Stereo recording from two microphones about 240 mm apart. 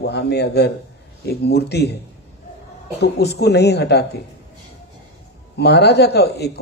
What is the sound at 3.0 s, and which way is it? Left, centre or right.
A man's voice, left.